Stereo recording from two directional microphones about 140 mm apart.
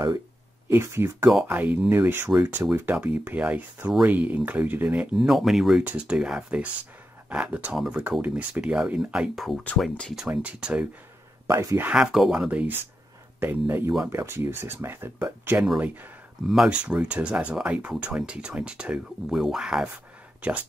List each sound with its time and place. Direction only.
0.7 s speech: 20° right (ahead or behind)
11.4 s speech: 20° right (ahead or behind)
11.9 s speech: 5° right (ahead or behind)
16.4 s speech: 5° right (ahead or behind)